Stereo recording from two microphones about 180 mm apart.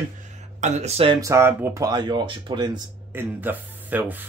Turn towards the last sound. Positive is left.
turn(degrees=-10)  # may be behind; listen again after turning